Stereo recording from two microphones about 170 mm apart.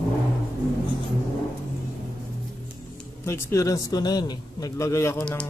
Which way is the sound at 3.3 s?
15° left (ahead or behind).